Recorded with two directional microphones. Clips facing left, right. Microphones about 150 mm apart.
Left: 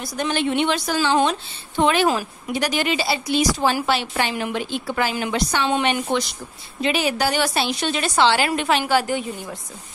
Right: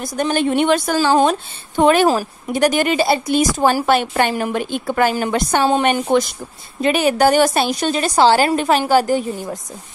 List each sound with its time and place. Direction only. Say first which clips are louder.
0.0 s a woman's voice: right 5 dB; 45° right (ahead or behind)